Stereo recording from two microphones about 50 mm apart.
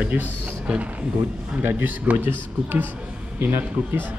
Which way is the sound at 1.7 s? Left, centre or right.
Right.